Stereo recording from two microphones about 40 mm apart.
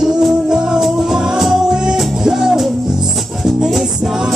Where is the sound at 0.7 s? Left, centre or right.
Centre.